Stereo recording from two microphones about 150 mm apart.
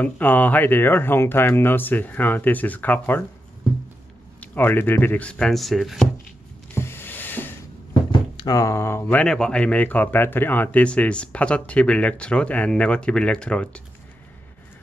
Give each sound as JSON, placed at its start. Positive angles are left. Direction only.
{"t": 0.0, "sound": "speech", "side_deg": 10}
{"t": 4.4, "sound": "speech", "side_deg": 15}
{"t": 6.7, "sound": "a sound", "side_deg": 15}
{"t": 8.4, "sound": "speech", "side_deg": 25}
{"t": 9.2, "sound": "speech", "side_deg": 5}